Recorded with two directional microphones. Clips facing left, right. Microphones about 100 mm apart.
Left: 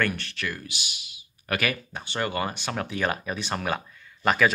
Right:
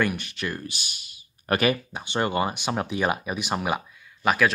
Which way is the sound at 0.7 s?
45° right (ahead or behind).